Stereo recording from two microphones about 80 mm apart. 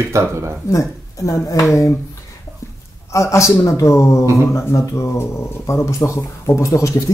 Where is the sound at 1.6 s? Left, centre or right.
Left.